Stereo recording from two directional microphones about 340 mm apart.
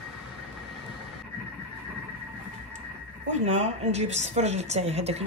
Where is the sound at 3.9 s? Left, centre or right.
Centre.